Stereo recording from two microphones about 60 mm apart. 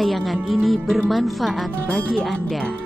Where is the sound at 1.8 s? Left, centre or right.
Centre.